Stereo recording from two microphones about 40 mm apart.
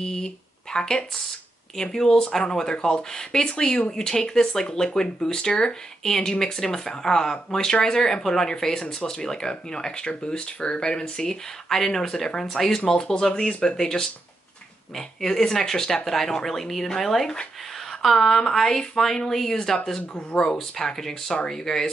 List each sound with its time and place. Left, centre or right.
0.0 s speech: centre
20.2 s speech: left